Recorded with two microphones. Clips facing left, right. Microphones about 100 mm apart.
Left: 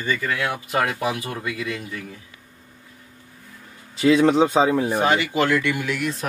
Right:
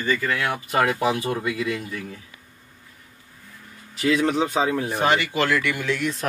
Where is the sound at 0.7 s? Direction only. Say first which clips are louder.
Right 3 dB; centre (ahead or behind).